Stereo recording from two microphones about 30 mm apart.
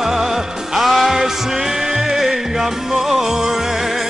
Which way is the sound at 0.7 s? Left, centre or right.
Centre.